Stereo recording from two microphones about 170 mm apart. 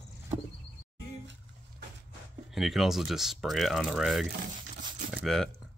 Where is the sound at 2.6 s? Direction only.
Centre (ahead or behind).